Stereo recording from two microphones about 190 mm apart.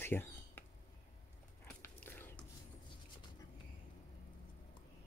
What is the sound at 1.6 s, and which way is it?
Whispering, 10° left (ahead or behind).